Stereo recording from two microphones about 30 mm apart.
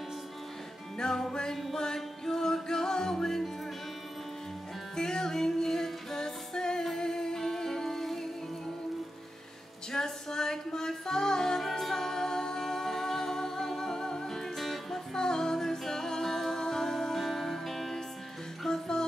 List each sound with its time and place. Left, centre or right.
0.9 s music: left
1.5 s music: centre
4.9 s music: left
9.9 s music: centre
15.1 s music: left; by 18.0 s centre
18.7 s music: left